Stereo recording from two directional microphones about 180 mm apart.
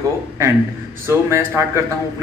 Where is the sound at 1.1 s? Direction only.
15° right (ahead or behind).